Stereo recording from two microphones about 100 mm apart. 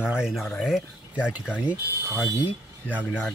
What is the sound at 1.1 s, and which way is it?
Speech, 10° right (ahead or behind).